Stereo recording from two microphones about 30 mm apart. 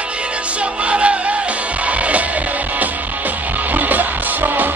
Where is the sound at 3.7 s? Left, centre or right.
Right.